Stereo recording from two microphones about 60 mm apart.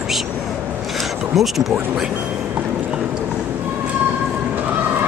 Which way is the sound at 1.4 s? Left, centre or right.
Centre.